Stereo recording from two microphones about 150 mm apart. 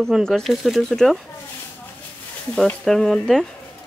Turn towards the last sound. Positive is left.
turn(degrees=5)  # may be behind; listen again after turning